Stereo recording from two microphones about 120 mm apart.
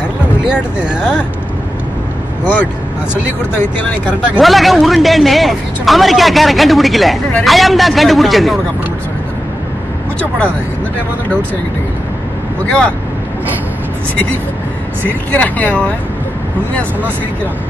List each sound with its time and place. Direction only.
0.5 s speech: 10° right (ahead or behind)
2.4 s speech: 15° left (ahead or behind)
4.4 s a man's voice: centre (ahead or behind)
12.6 s speech: 10° left (ahead or behind)
15.3 s speech: 10° left (ahead or behind)